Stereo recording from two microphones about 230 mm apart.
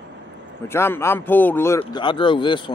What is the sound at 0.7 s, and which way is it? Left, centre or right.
Speech, centre.